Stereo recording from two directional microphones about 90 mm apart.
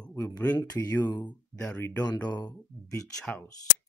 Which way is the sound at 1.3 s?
15° left (ahead or behind).